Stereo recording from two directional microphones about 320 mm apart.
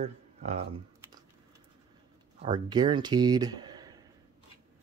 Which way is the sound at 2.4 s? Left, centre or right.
Centre.